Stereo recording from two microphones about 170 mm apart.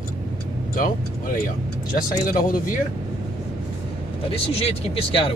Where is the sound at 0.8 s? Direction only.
55° left (ahead or behind).